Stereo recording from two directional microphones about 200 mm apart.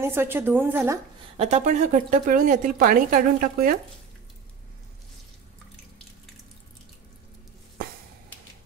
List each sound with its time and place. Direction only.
0.0 s speech: 10° right (ahead or behind)
1.3 s a woman's voice: 30° right (ahead or behind)